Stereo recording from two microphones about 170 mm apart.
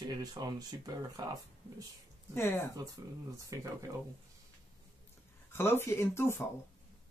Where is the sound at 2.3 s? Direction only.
15° left (ahead or behind).